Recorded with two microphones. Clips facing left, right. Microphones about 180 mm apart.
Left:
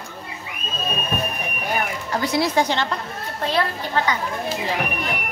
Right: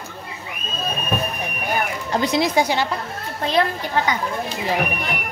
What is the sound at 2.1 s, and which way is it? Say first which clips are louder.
Speech: right 2 dB; 20° right (ahead or behind).